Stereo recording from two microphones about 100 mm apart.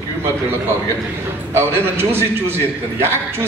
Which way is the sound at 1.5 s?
25° right (ahead or behind).